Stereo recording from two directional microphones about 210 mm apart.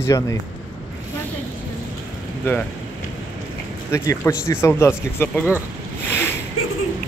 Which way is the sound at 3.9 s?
10° left (ahead or behind).